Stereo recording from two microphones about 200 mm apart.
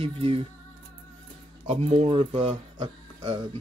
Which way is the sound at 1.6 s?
30° right (ahead or behind).